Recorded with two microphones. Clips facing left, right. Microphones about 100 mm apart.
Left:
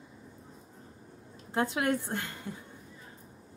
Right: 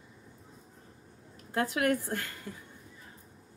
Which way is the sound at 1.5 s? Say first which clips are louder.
Even; 20° left (ahead or behind).